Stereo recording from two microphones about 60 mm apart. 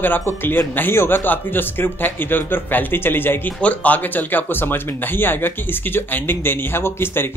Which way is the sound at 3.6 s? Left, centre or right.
Left.